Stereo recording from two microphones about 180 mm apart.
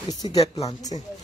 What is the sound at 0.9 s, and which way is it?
Speech, 30° left (ahead or behind).